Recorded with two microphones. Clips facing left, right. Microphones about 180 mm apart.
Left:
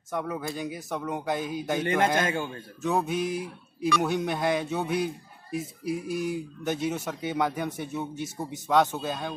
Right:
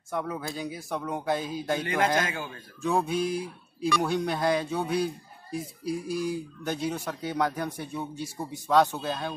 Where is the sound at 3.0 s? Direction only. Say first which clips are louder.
Right 1 dB; 20° left (ahead or behind).